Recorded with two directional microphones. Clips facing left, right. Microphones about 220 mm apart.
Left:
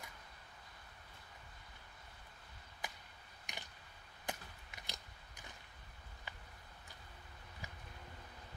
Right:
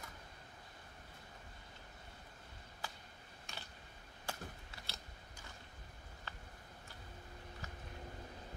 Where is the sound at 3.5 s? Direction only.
15° left (ahead or behind).